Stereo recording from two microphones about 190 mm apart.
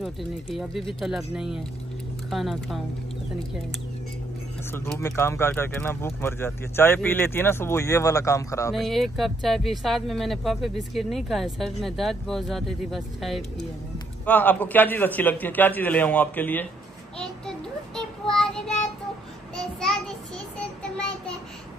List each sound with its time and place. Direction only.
1.0 s speech: 5° right (ahead or behind)
4.7 s speech: 15° left (ahead or behind)
8.7 s speech: centre (ahead or behind)
17.2 s child singing: 5° left (ahead or behind)
19.5 s a sound: 5° left (ahead or behind)